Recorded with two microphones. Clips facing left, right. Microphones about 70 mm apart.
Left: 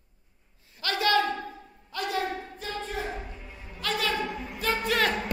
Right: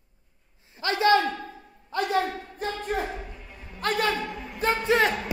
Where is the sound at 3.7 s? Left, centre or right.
Right.